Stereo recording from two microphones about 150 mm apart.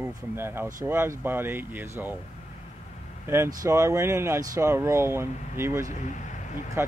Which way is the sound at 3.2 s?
15° right (ahead or behind).